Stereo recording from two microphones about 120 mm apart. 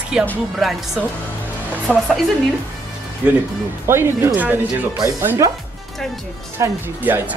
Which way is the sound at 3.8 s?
20° right (ahead or behind).